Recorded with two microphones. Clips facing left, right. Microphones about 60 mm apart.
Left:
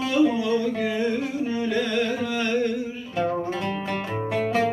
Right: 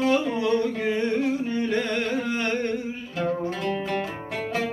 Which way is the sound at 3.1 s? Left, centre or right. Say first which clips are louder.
Left 2 dB; centre.